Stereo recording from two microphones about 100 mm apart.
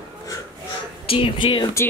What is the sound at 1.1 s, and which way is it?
Speech, 65° left (ahead or behind).